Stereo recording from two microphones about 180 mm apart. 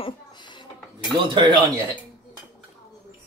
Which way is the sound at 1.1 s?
25° right (ahead or behind).